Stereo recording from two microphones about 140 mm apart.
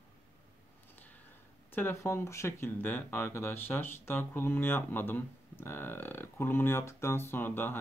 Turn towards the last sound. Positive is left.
turn(degrees=15)  # may be behind; listen again after turning